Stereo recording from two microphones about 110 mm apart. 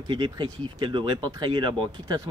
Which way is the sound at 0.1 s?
45° right (ahead or behind).